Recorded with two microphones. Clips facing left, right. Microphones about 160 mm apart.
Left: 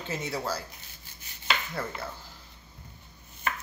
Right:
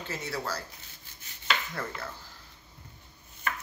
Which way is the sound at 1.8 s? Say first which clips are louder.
Left 2 dB; 10° left (ahead or behind).